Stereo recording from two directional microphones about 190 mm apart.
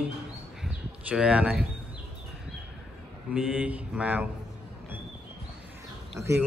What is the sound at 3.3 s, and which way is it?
Speech, 5° right (ahead or behind).